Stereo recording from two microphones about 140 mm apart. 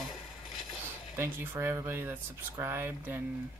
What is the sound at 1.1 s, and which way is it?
Speech, 15° right (ahead or behind).